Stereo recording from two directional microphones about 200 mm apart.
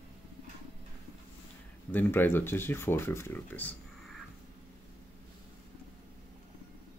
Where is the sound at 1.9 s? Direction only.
10° left (ahead or behind).